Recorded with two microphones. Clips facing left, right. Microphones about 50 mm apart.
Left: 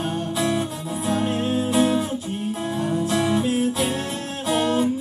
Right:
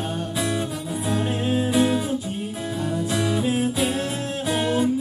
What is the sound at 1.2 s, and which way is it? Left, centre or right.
Music, centre.